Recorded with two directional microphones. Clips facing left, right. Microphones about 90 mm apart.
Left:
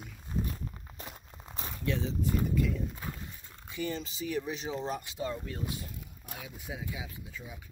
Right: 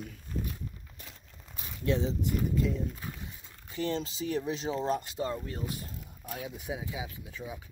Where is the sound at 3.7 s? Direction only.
35° right (ahead or behind).